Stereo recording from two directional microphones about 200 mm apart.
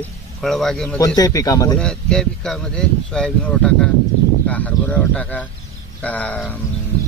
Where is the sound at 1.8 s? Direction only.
5° left (ahead or behind).